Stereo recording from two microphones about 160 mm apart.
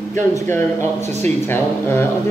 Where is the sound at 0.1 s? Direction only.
15° left (ahead or behind).